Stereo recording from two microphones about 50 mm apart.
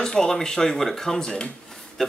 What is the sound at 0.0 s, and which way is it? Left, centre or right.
Speech, centre.